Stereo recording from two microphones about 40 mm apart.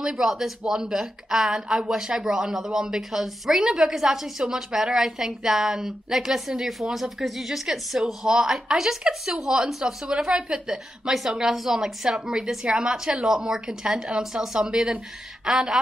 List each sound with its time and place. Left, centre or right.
0.0 s a woman's voice: centre